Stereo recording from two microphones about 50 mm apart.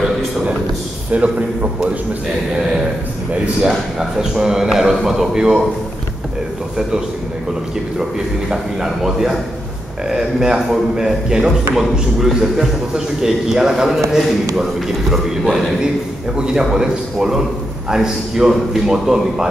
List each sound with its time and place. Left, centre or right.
1.1 s a man's voice: right
3.6 s a man's voice: centre
8.0 s a man's voice: centre
16.3 s a man's voice: centre